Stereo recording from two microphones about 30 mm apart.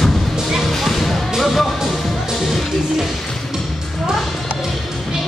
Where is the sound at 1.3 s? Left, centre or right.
Centre.